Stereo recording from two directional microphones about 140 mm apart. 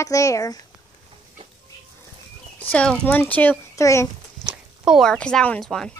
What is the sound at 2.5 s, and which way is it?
Speech, 10° left (ahead or behind).